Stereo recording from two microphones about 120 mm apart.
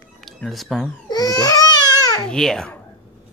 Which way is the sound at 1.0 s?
35° left (ahead or behind).